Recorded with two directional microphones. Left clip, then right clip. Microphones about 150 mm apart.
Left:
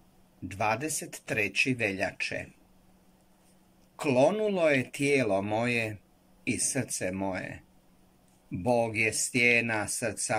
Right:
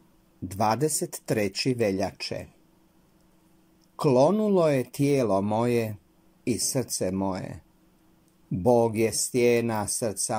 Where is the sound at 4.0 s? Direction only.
35° right (ahead or behind).